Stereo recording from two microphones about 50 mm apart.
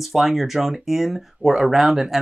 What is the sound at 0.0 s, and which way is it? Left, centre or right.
Speech, centre.